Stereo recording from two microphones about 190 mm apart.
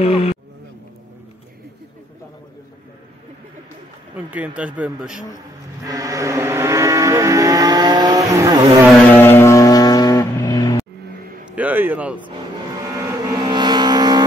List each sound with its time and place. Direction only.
0.0 s a sound: 30° left (ahead or behind)
4.3 s speech: 5° right (ahead or behind)
5.9 s vehicle: 15° right (ahead or behind)
9.1 s vehicle: 10° left (ahead or behind)
11.5 s a sound: 10° right (ahead or behind)
12.9 s vehicle: 20° right (ahead or behind)